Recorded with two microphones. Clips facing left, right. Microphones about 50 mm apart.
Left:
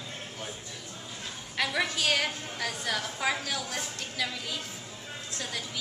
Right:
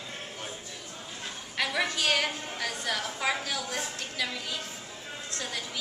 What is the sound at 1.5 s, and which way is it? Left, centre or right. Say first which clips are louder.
A woman's voice: even; centre.